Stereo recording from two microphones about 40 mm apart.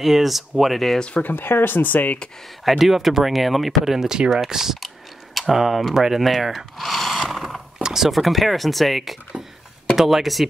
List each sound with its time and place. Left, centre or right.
0.0 s speech: centre
1.3 s speech: left
2.8 s speech: centre
4.8 s a sound: centre
5.6 s speech: centre
5.9 s a sound: centre
7.8 s speech: centre